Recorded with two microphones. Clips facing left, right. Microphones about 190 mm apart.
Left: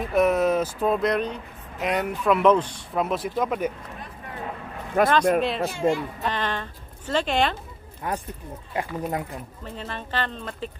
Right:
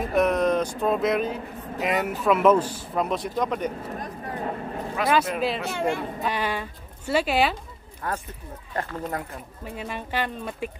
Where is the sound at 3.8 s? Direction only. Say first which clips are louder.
Right 6 dB; 40° right (ahead or behind).